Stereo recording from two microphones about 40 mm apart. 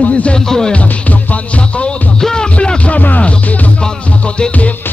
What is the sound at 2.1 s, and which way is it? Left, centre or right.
Music, centre.